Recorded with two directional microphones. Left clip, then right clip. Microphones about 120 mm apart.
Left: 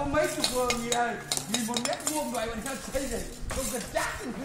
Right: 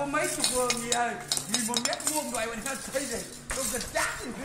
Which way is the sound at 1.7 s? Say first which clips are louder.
Even; 20° left (ahead or behind).